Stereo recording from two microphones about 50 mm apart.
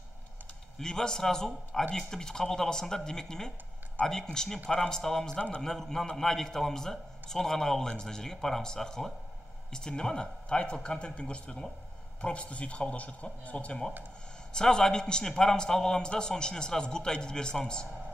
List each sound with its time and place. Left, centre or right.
0.7 s a man's voice: centre